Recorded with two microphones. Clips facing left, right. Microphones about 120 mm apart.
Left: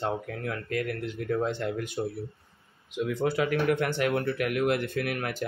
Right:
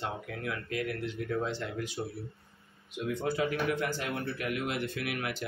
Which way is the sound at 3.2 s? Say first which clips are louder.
Left 5 dB; 80° left.